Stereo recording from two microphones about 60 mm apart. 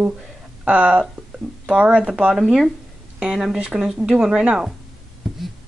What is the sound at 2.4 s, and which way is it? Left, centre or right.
A woman's voice, centre.